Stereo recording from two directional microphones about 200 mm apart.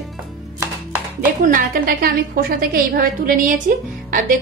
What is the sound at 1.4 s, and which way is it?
A woman's voice, 45° right (ahead or behind).